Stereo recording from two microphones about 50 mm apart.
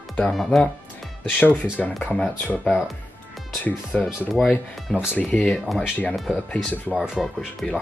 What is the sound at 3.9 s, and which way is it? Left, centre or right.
Speech, left.